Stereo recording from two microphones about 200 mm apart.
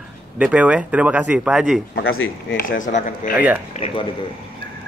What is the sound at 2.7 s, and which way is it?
Speech, 40° left (ahead or behind).